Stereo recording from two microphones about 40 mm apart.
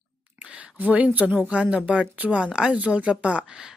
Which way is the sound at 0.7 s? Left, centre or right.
Right.